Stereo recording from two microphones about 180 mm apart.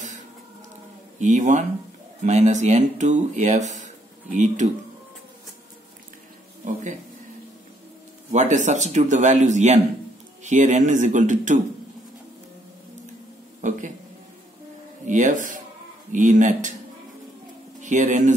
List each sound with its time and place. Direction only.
1.2 s speech: 45° right (ahead or behind)
6.6 s speech: 45° right (ahead or behind)
8.3 s a man's voice: 40° right (ahead or behind)
13.6 s a man's voice: 45° right (ahead or behind)
15.0 s speech: 45° right (ahead or behind)
17.7 s speech: 45° right (ahead or behind)